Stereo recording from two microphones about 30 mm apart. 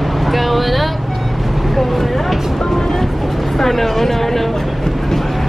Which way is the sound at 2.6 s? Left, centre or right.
Centre.